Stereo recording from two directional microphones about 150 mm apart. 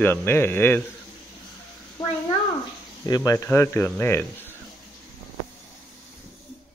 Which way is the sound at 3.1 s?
25° left (ahead or behind).